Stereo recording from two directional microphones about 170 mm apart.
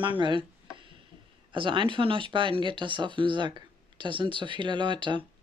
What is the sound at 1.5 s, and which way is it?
Speech, 30° right (ahead or behind).